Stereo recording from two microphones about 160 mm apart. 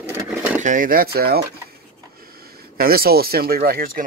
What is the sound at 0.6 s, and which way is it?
Speech, 55° right (ahead or behind).